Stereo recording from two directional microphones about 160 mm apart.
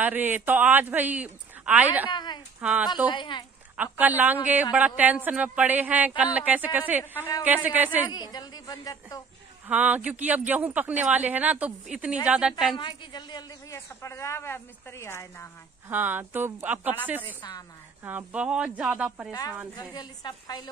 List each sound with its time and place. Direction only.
0.0 s a man's voice: 10° right (ahead or behind)
2.0 s a woman's voice: 30° left (ahead or behind)
3.7 s a man's voice: 10° right (ahead or behind)
7.2 s a woman's voice: 20° left (ahead or behind)
7.4 s a man's voice: 10° right (ahead or behind)
8.1 s a woman's voice: 25° left (ahead or behind)
9.7 s a man's voice: 10° right (ahead or behind)
12.7 s a woman's voice: 30° left (ahead or behind)
15.9 s a man's voice: 10° right (ahead or behind)
17.4 s a woman's voice: 25° left (ahead or behind)
18.0 s a man's voice: 10° right (ahead or behind)
19.7 s a woman's voice: 25° left (ahead or behind)